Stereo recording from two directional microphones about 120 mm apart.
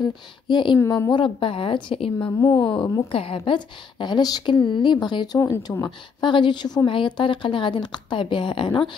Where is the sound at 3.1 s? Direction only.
50° left (ahead or behind); by 5.9 s 25° left (ahead or behind).